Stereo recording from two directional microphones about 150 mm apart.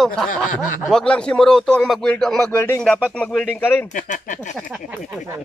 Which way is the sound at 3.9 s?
60° left (ahead or behind).